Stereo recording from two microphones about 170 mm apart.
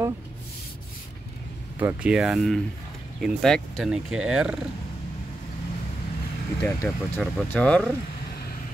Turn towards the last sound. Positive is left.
turn(degrees=5)  # may be behind; listen again after turning